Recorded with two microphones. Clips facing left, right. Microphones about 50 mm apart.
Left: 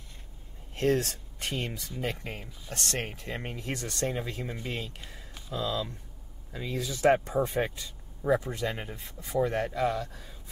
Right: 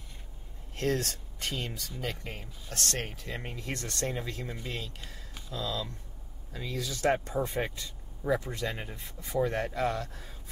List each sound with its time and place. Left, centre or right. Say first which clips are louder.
0.7 s speech: left 4 dB; left
7.3 s speech: left 3 dB; centre
8.8 s speech: left 1 dB; centre